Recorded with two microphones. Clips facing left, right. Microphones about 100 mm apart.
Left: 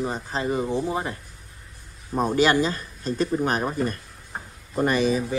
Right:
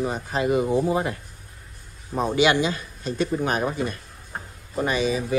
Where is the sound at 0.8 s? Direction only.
20° right (ahead or behind).